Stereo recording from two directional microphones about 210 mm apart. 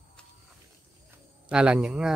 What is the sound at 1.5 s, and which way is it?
Speech, 5° right (ahead or behind).